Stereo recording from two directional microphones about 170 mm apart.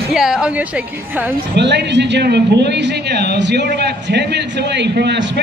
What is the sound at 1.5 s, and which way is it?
A man's voice, 85° right.